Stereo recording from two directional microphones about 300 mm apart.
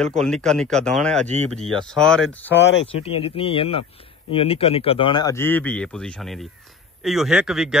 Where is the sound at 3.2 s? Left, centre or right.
Centre.